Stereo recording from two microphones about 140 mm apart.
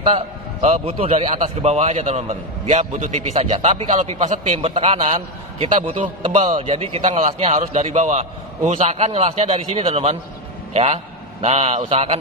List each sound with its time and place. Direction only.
0.6 s a man's voice: 45° right (ahead or behind)
4.6 s a man's voice: 45° right (ahead or behind)